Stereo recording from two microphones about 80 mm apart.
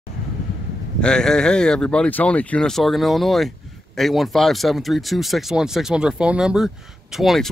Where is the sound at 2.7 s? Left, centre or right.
Centre.